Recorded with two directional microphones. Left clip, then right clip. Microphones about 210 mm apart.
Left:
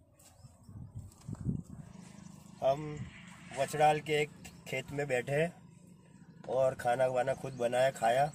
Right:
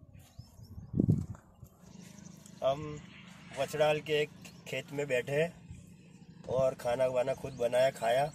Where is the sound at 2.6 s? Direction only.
10° left (ahead or behind).